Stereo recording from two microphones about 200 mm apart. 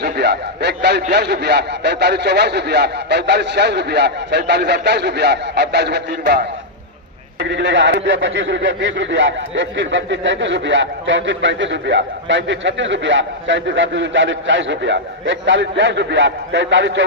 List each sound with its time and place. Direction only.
0.0 s a man's voice: 55° right (ahead or behind)
7.4 s speech: 60° right (ahead or behind)